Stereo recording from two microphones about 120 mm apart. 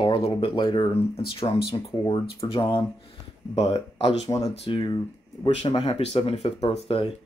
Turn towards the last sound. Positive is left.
turn(degrees=50)  # may be behind; listen again after turning